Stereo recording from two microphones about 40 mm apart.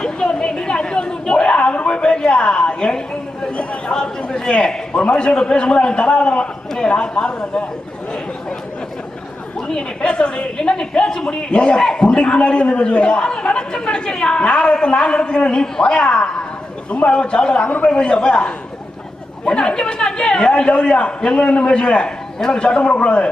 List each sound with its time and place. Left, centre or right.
0.0 s a sound: centre
3.9 s a woman's voice: left
9.6 s a woman's voice: centre